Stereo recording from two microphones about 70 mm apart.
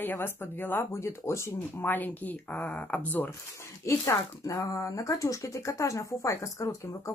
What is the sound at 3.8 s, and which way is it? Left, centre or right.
Speech, left.